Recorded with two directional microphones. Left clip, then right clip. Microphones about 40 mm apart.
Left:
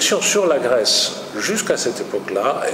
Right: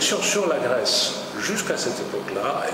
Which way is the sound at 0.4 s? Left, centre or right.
Centre.